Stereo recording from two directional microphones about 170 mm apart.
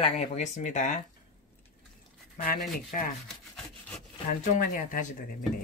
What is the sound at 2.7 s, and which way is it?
Rub, 55° left (ahead or behind).